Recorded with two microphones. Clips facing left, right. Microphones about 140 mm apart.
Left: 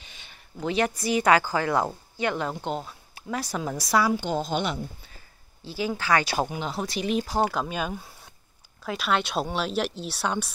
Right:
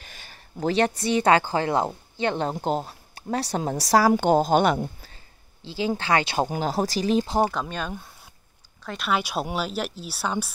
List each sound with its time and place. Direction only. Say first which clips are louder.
0.0 s speech: right 4 dB; 45° right (ahead or behind)
4.1 s speech: right 8 dB; 55° right (ahead or behind)
5.7 s speech: right 1 dB; 25° right (ahead or behind)
6.5 s speech: right 5 dB; 40° right (ahead or behind)
7.5 s speech: left 1 dB; 5° left (ahead or behind)